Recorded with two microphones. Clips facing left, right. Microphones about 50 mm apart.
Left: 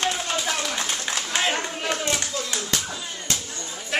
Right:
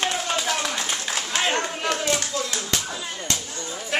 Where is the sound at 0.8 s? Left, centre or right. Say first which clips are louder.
Even; centre.